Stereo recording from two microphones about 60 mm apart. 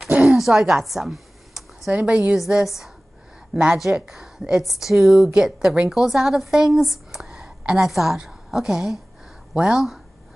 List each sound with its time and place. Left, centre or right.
0.2 s a sound: centre
2.0 s a woman's voice: right
2.3 s a woman's voice: centre